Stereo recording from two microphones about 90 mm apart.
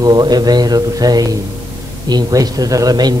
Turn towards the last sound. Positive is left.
turn(degrees=-45)  # may be behind; listen again after turning